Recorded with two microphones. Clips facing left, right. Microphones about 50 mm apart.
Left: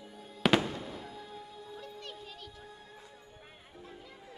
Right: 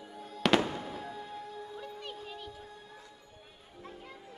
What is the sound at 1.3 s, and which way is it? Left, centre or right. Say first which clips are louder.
Music: right 4 dB; centre.